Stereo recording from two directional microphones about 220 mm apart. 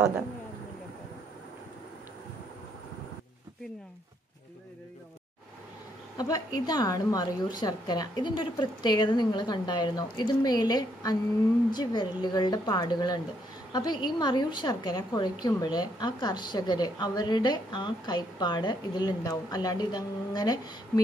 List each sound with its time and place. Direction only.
6.1 s a woman's voice: 15° left (ahead or behind)